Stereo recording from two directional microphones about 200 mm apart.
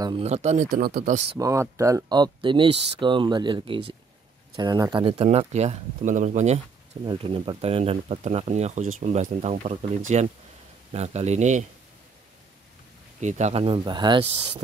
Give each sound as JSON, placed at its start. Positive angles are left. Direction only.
{"t": 0.0, "sound": "speech", "side_deg": -30}
{"t": 1.3, "sound": "speech", "side_deg": -15}
{"t": 13.2, "sound": "speech", "side_deg": -35}